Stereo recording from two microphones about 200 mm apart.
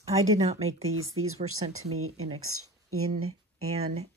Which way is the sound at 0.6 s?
90° right.